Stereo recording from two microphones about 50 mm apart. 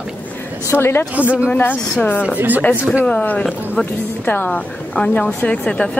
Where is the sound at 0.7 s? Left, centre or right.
Left.